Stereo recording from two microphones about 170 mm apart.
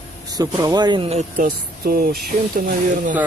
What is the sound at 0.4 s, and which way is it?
Speech, 20° right (ahead or behind).